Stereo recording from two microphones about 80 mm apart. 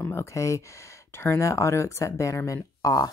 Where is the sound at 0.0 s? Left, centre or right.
Left.